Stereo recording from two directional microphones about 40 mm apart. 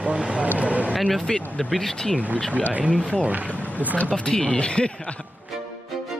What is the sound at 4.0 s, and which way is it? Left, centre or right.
Speech, left.